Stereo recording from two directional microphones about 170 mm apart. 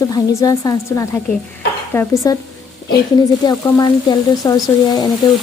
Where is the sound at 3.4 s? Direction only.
20° left (ahead or behind).